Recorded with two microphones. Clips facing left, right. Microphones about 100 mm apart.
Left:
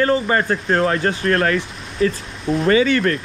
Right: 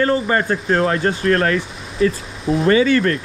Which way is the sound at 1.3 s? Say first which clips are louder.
Right 1 dB; 40° right (ahead or behind).